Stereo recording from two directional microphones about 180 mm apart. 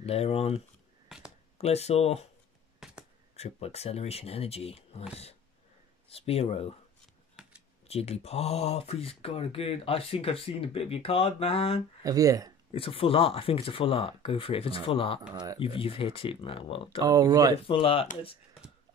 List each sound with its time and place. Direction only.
0.0 s speech: 35° left (ahead or behind)
1.0 s a sound: 5° right (ahead or behind)
1.6 s speech: 35° left (ahead or behind)
2.8 s a sound: 5° right (ahead or behind)
3.3 s speech: 35° left (ahead or behind)
7.4 s computer keyboard: 5° right (ahead or behind)
7.9 s speech: 35° left (ahead or behind)
12.0 s speech: 20° right (ahead or behind)
12.7 s speech: 30° left (ahead or behind)
15.3 s speech: 20° right (ahead or behind)
15.6 s speech: 30° left (ahead or behind)
17.0 s speech: 20° right (ahead or behind)
17.6 s speech: 30° left (ahead or behind)